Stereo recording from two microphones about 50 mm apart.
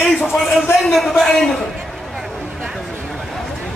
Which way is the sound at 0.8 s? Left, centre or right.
Centre.